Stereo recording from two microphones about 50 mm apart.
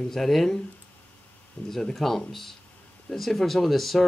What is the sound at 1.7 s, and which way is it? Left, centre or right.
Speech, centre.